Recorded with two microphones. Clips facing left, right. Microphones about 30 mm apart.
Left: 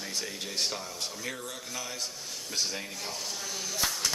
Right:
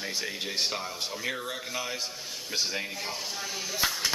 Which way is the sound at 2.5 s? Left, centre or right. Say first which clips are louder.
Right 3 dB; centre.